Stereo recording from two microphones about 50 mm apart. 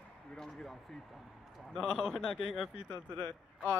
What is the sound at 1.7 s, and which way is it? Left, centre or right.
Speech, centre.